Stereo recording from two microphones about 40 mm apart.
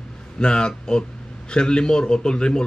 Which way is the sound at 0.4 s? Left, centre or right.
Left.